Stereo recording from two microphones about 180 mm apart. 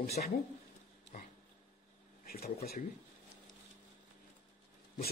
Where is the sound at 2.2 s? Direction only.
55° left (ahead or behind).